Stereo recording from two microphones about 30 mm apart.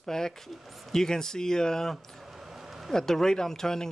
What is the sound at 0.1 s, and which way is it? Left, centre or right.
Speech, left.